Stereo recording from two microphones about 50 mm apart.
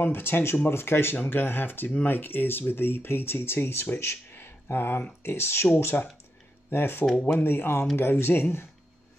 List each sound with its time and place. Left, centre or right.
0.0 s speech: left
1.1 s speech: left
5.9 s speech: left
6.7 s speech: left